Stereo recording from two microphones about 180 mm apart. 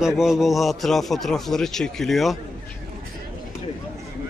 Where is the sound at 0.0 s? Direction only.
5° right (ahead or behind).